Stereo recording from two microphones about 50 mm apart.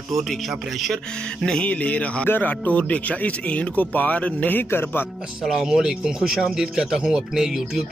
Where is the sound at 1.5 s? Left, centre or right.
Left.